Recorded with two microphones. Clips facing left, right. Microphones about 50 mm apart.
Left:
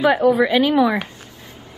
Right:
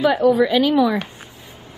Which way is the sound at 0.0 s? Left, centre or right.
Centre.